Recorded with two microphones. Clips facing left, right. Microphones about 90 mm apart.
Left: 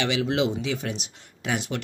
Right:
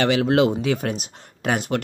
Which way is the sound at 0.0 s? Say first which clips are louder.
Right 6 dB; 45° right (ahead or behind).